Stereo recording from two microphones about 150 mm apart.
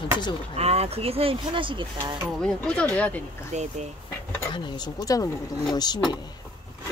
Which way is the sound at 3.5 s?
50° right (ahead or behind).